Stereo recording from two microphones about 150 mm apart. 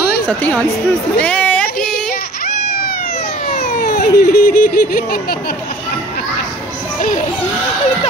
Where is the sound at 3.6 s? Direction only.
70° left (ahead or behind).